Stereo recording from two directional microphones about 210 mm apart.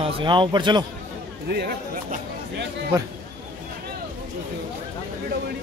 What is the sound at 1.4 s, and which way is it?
Speech, 50° right (ahead or behind).